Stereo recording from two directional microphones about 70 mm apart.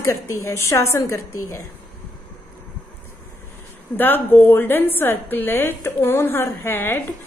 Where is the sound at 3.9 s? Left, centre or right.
Left.